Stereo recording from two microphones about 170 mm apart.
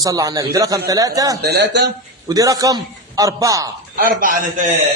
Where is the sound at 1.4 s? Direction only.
80° right.